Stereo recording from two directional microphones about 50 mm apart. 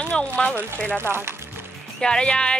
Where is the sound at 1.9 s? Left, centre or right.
Centre.